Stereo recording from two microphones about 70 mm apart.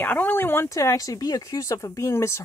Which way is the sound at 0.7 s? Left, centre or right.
Left.